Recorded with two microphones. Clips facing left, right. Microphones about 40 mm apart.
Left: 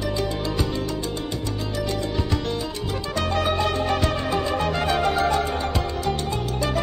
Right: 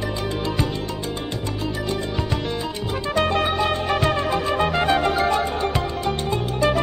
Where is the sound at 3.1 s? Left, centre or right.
Right.